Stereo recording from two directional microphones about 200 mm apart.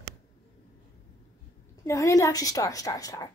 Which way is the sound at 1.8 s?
15° left (ahead or behind).